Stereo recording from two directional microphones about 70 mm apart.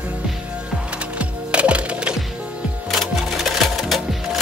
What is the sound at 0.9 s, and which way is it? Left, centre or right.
Music, centre.